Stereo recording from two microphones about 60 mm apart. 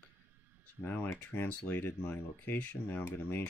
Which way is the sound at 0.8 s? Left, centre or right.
Left.